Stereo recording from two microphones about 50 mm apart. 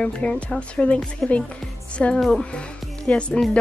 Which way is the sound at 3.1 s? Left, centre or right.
Left.